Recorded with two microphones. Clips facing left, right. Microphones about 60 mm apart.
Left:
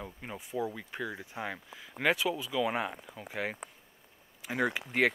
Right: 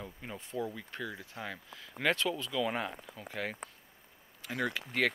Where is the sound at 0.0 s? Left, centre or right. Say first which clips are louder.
Left 2 dB; centre.